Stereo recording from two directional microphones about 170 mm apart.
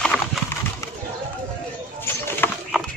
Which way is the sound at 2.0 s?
15° left (ahead or behind).